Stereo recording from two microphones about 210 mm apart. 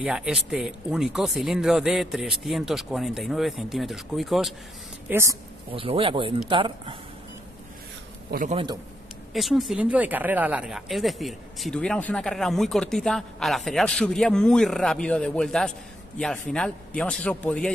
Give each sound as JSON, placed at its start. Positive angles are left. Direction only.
{"t": 0.0, "sound": "speech", "side_deg": -5}
{"t": 5.1, "sound": "a woman's voice", "side_deg": -15}
{"t": 5.7, "sound": "speech", "side_deg": -25}
{"t": 8.3, "sound": "a man's voice", "side_deg": -40}
{"t": 9.3, "sound": "speech", "side_deg": 0}